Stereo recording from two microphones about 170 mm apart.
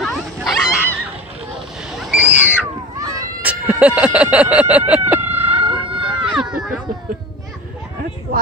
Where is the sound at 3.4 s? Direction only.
5° right (ahead or behind).